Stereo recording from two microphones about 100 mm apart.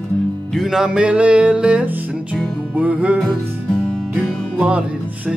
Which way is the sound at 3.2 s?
10° left (ahead or behind).